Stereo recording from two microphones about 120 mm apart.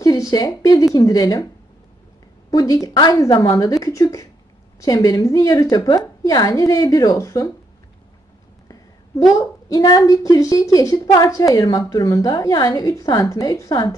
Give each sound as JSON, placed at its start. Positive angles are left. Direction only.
{"t": 0.0, "sound": "speech", "side_deg": 30}
{"t": 2.5, "sound": "a woman's voice", "side_deg": 30}
{"t": 8.6, "sound": "a woman's voice", "side_deg": 30}